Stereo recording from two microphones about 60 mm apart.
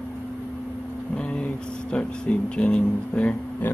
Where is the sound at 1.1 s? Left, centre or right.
Centre.